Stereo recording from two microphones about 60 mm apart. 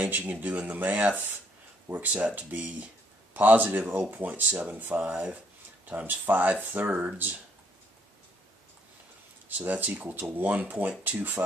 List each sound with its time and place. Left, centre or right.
0.1 s speech: right
9.6 s speech: right